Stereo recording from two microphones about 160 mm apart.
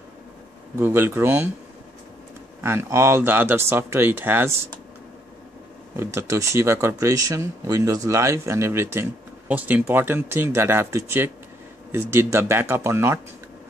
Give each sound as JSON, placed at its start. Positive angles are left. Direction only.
{"t": 0.7, "sound": "speech", "side_deg": -15}
{"t": 2.6, "sound": "speech", "side_deg": -15}
{"t": 5.9, "sound": "speech", "side_deg": -20}